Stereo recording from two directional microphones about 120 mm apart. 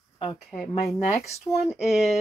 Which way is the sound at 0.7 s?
65° left (ahead or behind).